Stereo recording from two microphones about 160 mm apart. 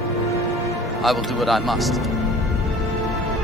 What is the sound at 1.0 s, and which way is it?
A man's voice, centre (ahead or behind).